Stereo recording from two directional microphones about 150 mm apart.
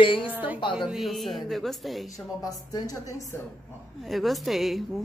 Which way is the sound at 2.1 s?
25° left (ahead or behind).